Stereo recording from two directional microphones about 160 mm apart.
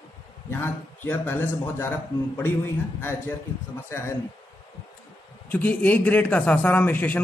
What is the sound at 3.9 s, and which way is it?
Speech, 15° left (ahead or behind).